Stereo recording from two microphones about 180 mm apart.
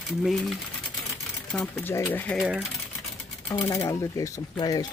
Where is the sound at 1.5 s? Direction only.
15° left (ahead or behind).